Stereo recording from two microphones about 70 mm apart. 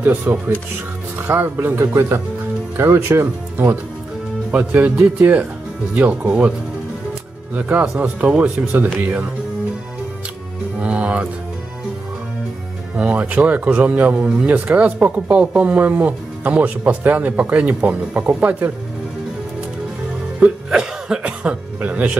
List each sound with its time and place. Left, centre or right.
0.0 s speech: right
4.8 s speech: centre
7.5 s speech: centre
10.8 s speech: centre
12.9 s speech: centre
20.4 s speech: centre